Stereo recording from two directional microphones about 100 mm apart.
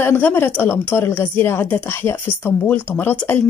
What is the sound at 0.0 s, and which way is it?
A woman's voice, 20° left (ahead or behind).